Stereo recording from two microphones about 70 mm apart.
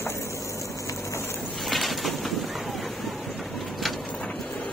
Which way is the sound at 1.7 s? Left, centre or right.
Centre.